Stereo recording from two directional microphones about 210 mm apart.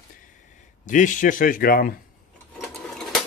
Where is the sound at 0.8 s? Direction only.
35° left (ahead or behind).